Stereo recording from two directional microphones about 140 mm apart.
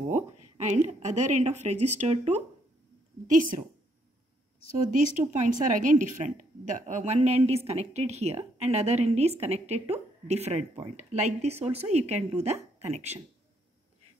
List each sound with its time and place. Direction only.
0.1 s a woman's voice: 60° right (ahead or behind)
3.3 s a woman's voice: 70° right (ahead or behind)
4.9 s a woman's voice: 65° right (ahead or behind)